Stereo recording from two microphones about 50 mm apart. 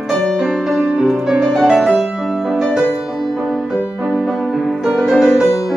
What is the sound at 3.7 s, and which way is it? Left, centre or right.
Music, centre.